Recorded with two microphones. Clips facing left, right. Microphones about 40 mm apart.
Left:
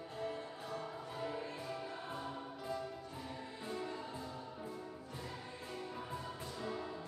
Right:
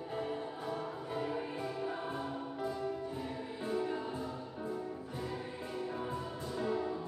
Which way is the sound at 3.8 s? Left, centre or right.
Centre.